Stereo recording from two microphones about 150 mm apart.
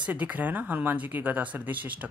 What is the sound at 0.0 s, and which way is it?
Speech, 10° right (ahead or behind).